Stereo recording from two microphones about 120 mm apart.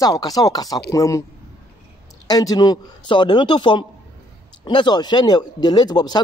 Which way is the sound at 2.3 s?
30° left (ahead or behind).